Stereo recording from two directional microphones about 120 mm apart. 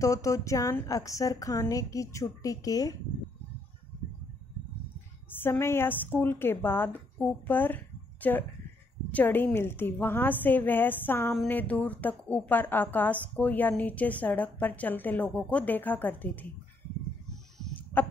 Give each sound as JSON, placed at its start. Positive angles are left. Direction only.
{"t": 0.0, "sound": "a woman's voice", "side_deg": 25}
{"t": 5.4, "sound": "a woman's voice", "side_deg": 20}
{"t": 17.3, "sound": "a sound", "side_deg": 5}